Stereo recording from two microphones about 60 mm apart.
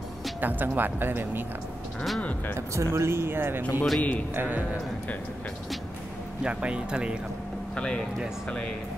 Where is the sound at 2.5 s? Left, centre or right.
Right.